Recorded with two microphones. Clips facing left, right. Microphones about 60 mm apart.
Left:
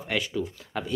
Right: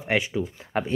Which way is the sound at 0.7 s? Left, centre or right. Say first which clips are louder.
Right 6 dB; right.